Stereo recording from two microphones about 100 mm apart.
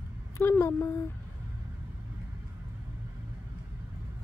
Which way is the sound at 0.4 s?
25° left (ahead or behind).